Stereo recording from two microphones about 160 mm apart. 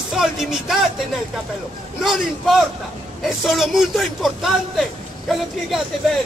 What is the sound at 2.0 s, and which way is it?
A man's voice, centre (ahead or behind).